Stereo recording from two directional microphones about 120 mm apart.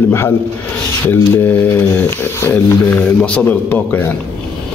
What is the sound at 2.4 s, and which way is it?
Speech, 15° left (ahead or behind).